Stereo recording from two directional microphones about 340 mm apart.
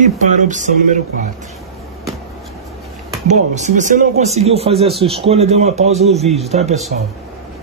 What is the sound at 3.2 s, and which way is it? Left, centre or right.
Speech, right.